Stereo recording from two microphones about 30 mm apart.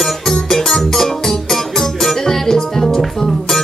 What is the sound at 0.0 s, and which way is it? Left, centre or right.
Music, centre.